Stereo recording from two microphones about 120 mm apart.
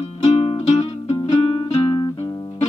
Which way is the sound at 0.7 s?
65° left (ahead or behind).